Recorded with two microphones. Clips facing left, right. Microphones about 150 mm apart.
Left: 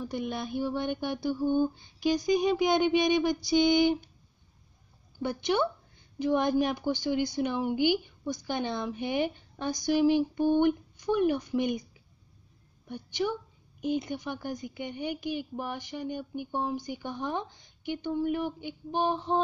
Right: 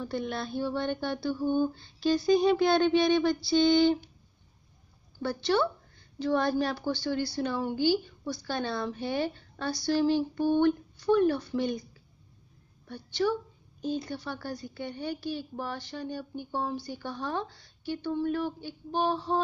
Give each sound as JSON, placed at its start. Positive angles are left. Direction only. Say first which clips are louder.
{"t": 0.0, "sound": "a woman's voice", "louder": "even", "side_deg": 15}
{"t": 5.2, "sound": "a woman's voice", "louder": "right 1 dB", "side_deg": 15}
{"t": 12.8, "sound": "a woman's voice", "louder": "right 2 dB", "side_deg": 15}